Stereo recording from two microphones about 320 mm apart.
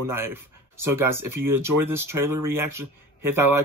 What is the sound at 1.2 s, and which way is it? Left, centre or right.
Speech, right.